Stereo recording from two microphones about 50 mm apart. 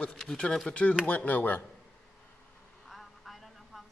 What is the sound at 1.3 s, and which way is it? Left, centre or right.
Speech, left.